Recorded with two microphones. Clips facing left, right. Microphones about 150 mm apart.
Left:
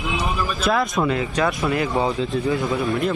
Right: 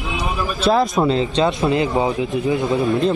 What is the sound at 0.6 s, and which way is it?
A man's voice, 25° right (ahead or behind).